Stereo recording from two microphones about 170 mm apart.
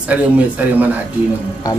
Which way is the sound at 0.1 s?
10° right (ahead or behind).